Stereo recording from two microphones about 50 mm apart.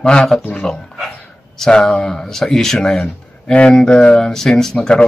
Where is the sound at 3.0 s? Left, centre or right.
Left.